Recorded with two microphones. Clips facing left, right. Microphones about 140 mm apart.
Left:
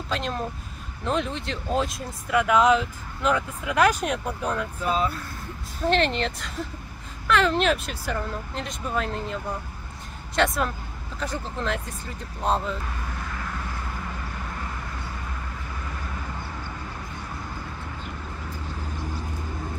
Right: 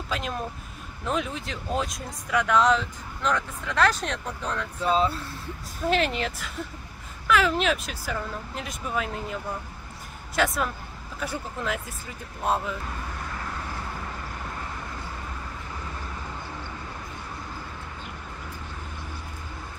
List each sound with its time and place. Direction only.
0.1 s speech: 5° right (ahead or behind)
4.8 s speech: 30° right (ahead or behind)
5.9 s speech: 5° right (ahead or behind)